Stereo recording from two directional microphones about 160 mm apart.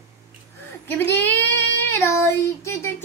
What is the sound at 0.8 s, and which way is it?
Child singing, 10° left (ahead or behind).